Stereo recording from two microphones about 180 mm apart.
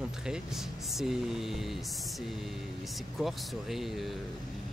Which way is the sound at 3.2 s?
Centre (ahead or behind).